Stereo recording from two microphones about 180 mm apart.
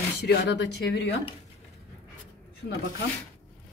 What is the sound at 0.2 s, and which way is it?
Speech, 70° left (ahead or behind).